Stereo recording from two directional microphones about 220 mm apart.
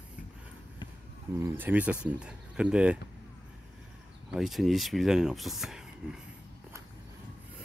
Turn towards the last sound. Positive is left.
turn(degrees=0)  # may be behind; listen again after turning